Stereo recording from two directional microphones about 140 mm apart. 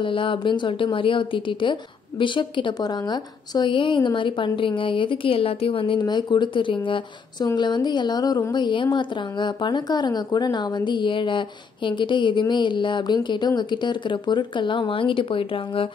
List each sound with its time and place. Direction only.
0.0 s speech: 35° left (ahead or behind)